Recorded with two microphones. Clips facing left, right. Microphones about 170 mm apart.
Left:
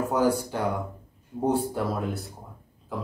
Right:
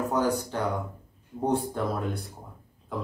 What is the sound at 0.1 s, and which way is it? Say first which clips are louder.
Speech: left 2 dB; 10° left (ahead or behind).